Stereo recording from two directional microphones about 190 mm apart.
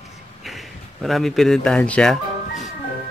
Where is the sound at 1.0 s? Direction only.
Centre (ahead or behind).